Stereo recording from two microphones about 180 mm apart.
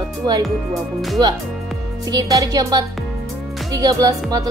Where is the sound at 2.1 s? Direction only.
20° right (ahead or behind).